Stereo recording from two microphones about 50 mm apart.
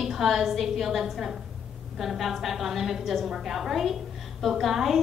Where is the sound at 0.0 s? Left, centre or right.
Centre.